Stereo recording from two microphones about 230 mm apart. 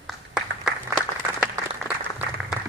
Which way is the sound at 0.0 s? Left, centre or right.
Centre.